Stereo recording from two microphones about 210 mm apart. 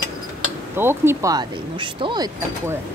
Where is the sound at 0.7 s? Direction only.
10° right (ahead or behind).